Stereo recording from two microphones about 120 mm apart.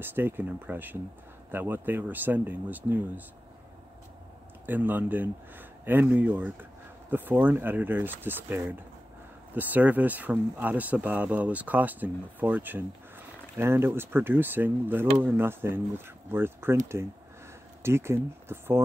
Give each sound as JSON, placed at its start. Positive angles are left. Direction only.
{"t": 0.0, "sound": "speech", "side_deg": -15}
{"t": 4.6, "sound": "speech", "side_deg": -15}